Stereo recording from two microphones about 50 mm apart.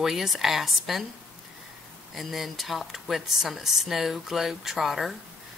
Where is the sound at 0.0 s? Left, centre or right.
Centre.